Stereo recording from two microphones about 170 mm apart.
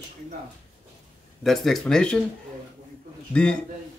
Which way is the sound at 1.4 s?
Centre (ahead or behind).